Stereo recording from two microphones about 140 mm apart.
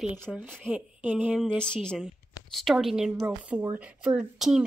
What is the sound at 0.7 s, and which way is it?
Speech, 10° right (ahead or behind).